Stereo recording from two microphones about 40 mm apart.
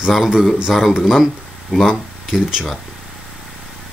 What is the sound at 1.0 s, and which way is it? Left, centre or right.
Speech, centre.